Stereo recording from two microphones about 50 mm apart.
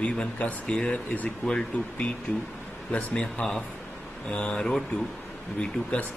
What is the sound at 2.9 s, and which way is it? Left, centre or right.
Speech, left.